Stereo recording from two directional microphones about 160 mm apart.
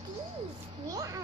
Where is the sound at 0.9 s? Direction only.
20° right (ahead or behind).